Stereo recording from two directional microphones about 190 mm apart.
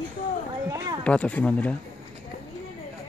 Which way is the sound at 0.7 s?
20° right (ahead or behind).